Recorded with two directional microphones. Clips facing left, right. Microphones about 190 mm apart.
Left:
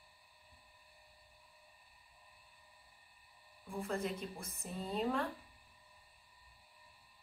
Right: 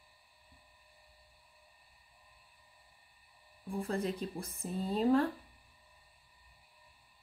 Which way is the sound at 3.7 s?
35° right (ahead or behind).